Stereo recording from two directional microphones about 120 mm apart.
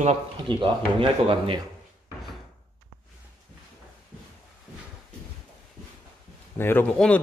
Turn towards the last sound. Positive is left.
turn(degrees=5)  # may be behind; listen again after turning